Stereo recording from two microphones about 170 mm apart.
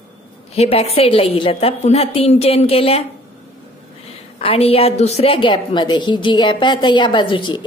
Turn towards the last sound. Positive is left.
turn(degrees=30)  # may be behind; listen again after turning